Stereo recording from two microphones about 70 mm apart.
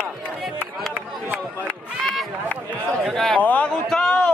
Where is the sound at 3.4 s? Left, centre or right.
Left.